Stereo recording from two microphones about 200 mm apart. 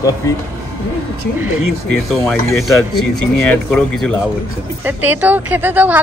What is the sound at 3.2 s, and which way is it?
Speech, 5° left (ahead or behind).